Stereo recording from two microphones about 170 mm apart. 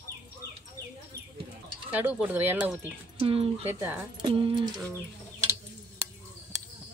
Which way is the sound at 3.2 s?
35° right (ahead or behind).